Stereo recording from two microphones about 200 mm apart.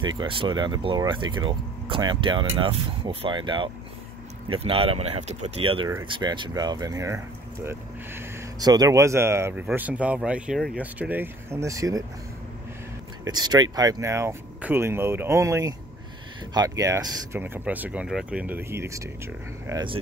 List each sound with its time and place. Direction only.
0.0 s speech: 25° right (ahead or behind)
13.2 s speech: 20° right (ahead or behind)